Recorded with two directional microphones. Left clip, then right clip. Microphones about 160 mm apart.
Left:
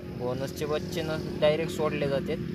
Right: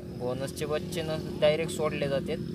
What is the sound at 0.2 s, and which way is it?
Speech, 20° left (ahead or behind).